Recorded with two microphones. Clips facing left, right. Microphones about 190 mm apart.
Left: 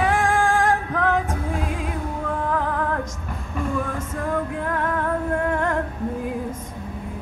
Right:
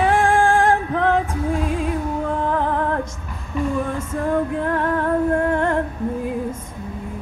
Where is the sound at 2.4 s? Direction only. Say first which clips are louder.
Right 2 dB; 30° right (ahead or behind).